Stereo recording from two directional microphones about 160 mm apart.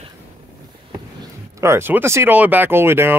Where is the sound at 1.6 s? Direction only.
15° right (ahead or behind).